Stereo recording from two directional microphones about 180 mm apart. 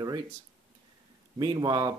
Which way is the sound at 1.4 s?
20° right (ahead or behind).